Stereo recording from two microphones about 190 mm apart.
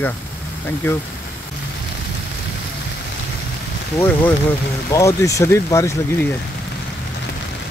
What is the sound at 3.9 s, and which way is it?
Speech, 10° left (ahead or behind).